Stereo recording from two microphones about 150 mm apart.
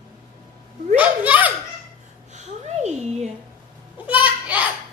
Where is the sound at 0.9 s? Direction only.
10° right (ahead or behind).